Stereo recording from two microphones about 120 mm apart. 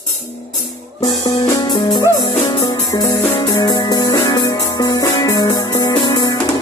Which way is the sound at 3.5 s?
40° left (ahead or behind).